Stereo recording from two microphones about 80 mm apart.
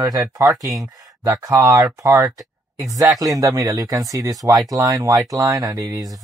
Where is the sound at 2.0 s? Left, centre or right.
Right.